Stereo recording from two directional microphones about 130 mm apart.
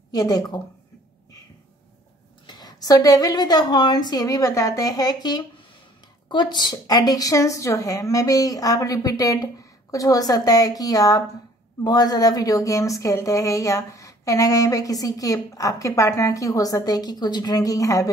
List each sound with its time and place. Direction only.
0.1 s a woman's voice: 30° left (ahead or behind)
2.4 s a woman's voice: 30° left (ahead or behind)